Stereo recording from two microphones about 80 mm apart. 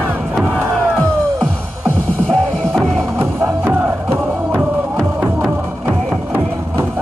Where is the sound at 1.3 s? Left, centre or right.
Centre.